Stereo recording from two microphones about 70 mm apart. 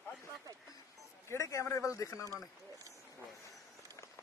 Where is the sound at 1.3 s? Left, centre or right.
Left.